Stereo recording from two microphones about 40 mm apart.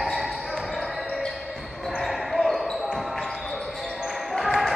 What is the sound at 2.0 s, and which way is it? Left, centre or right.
Basketball bounce, centre.